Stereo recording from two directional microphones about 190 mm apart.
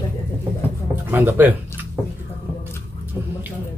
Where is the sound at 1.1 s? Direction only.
10° right (ahead or behind).